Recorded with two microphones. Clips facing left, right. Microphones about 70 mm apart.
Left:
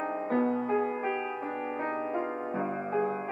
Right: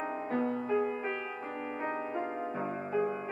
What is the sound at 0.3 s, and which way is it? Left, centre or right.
Music, left.